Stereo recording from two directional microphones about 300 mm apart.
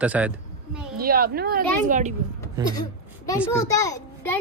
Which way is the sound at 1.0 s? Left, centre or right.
Right.